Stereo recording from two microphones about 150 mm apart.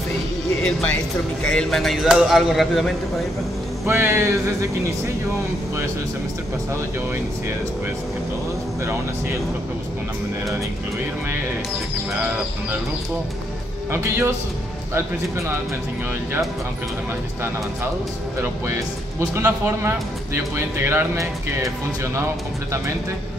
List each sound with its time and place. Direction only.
0.7 s speech: 5° left (ahead or behind)
3.8 s speech: 15° right (ahead or behind)
14.0 s speech: 15° right (ahead or behind)
18.4 s speech: 15° right (ahead or behind)